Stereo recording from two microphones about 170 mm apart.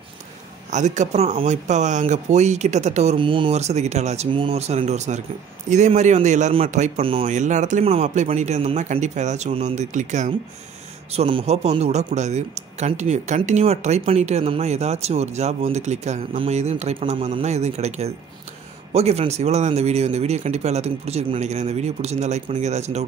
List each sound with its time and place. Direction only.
0.7 s a man's voice: 45° right (ahead or behind)
11.1 s speech: 35° right (ahead or behind)